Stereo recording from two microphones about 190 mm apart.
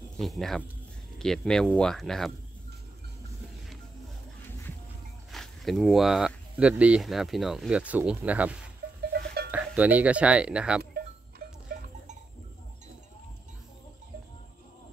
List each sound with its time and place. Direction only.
0.2 s speech: centre (ahead or behind)
5.3 s speech: centre (ahead or behind)
9.1 s a sound: 60° right (ahead or behind)
9.5 s speech: 10° right (ahead or behind)
10.8 s livestock: 55° right (ahead or behind)